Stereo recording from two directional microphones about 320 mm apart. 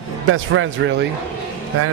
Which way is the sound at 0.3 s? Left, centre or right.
Right.